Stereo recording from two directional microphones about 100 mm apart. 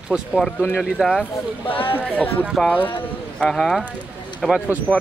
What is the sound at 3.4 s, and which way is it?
Speech, 5° left (ahead or behind).